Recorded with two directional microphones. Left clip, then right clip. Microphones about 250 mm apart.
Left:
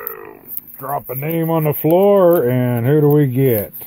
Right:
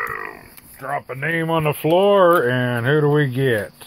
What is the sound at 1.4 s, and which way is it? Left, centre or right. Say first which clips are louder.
Speech: left 5 dB; centre.